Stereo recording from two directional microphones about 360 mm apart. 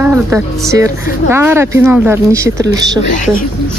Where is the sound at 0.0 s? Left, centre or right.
Centre.